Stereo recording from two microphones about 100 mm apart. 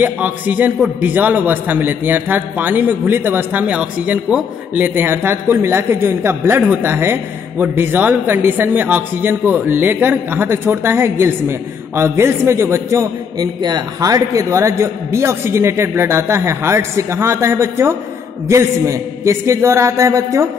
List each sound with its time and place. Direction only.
0.0 s a man's voice: 15° right (ahead or behind)
13.4 s a man's voice: 45° right (ahead or behind)